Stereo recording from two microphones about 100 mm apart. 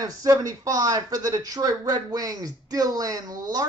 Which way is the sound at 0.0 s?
35° right (ahead or behind).